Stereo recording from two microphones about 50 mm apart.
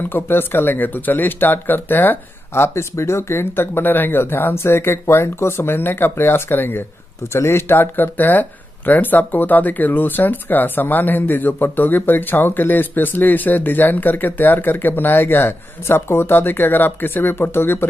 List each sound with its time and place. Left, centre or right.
0.1 s speech: left
2.5 s speech: left